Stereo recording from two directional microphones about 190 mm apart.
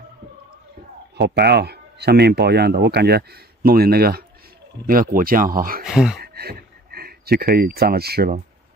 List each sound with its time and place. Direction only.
1.1 s speech: 60° right (ahead or behind)
5.9 s speech: centre (ahead or behind)
6.2 s a sound: 55° right (ahead or behind)